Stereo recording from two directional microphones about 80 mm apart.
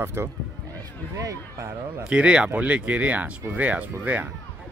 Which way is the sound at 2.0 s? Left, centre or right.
Centre.